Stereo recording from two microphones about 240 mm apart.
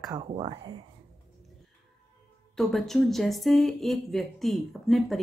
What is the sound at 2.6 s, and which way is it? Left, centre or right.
Speech, centre.